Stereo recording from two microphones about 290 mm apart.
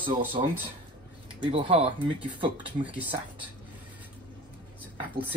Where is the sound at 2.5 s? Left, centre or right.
Centre.